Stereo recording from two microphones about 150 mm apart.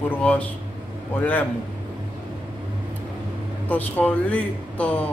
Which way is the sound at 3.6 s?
10° left (ahead or behind).